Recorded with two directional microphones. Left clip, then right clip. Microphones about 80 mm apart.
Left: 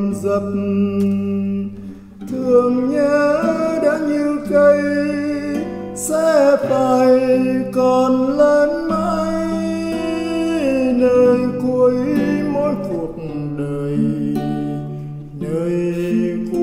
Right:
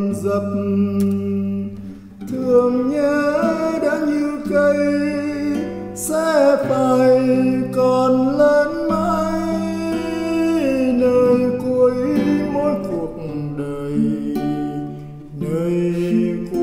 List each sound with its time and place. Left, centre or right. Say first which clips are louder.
0.2 s music: left 2 dB; centre
2.3 s music: left 1 dB; centre
14.3 s music: even; centre
15.5 s mantra: even; centre